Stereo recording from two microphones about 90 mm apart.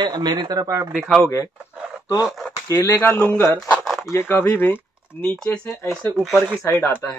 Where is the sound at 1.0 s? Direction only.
5° left (ahead or behind).